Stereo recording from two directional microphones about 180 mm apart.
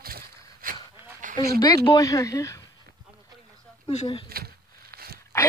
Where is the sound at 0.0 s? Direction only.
55° right (ahead or behind).